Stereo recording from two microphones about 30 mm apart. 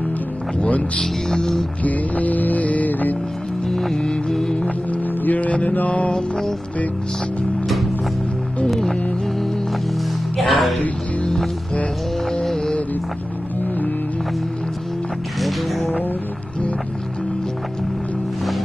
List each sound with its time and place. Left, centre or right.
1.8 s music: left
3.6 s music: centre
4.6 s music: left
5.2 s music: left
6.1 s music: left
10.3 s music: centre
15.4 s music: centre